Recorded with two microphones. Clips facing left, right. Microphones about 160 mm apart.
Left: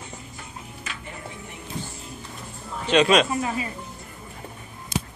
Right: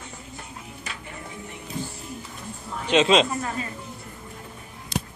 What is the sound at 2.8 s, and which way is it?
Speech, 20° right (ahead or behind).